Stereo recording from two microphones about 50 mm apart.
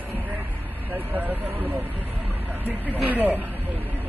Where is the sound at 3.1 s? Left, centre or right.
Right.